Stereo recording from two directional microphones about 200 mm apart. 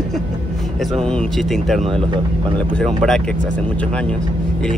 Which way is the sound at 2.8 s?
Centre (ahead or behind).